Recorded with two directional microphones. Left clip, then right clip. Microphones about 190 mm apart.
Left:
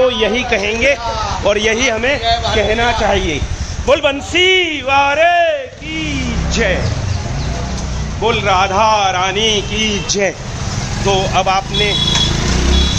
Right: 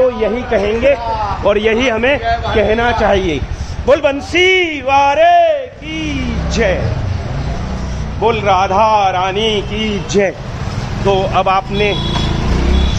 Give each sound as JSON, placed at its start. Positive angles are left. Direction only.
{"t": 0.2, "sound": "speech", "side_deg": 0}
{"t": 1.4, "sound": "a man's voice", "side_deg": -30}
{"t": 3.8, "sound": "a man's voice", "side_deg": -20}
{"t": 8.2, "sound": "speech", "side_deg": -20}
{"t": 11.1, "sound": "a man's voice", "side_deg": -30}
{"t": 11.4, "sound": "speech", "side_deg": -50}